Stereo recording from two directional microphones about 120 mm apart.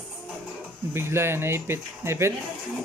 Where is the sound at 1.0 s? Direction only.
20° right (ahead or behind).